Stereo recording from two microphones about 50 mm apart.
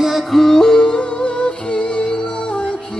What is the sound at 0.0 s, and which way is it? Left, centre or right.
Music, centre.